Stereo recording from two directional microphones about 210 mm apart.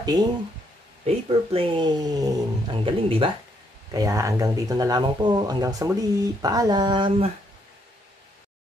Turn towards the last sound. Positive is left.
turn(degrees=-25)  # may be behind; listen again after turning